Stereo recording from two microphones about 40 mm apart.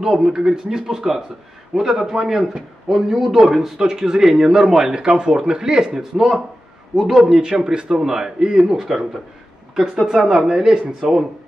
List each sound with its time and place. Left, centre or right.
0.1 s speech: centre
8.6 s speech: centre